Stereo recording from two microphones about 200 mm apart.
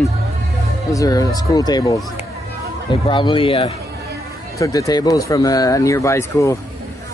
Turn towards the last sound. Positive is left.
turn(degrees=15)  # may be behind; listen again after turning